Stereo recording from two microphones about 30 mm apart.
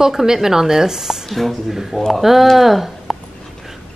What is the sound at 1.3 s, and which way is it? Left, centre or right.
Speech, centre.